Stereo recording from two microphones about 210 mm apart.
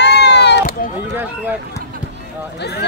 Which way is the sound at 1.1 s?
10° right (ahead or behind).